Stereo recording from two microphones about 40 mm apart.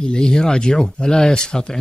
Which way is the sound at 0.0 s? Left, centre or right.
Centre.